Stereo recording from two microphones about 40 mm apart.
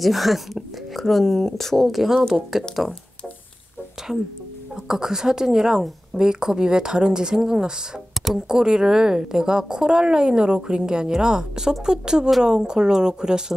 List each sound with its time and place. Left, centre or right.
0.0 s a sound: centre
1.0 s speech: centre
1.9 s a woman's voice: centre
4.8 s a woman's voice: centre